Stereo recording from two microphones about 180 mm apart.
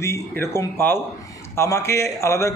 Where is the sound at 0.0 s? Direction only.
15° left (ahead or behind).